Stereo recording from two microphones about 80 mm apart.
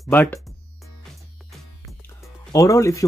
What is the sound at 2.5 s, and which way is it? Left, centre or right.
Speech, left.